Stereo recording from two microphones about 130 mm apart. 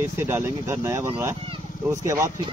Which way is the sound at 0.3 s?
20° right (ahead or behind).